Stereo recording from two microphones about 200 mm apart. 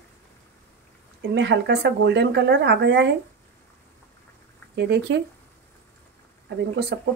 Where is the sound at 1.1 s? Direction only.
60° right (ahead or behind).